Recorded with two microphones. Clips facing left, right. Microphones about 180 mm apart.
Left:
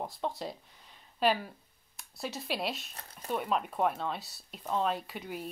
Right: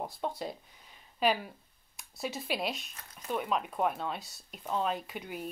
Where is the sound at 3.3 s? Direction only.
Centre (ahead or behind).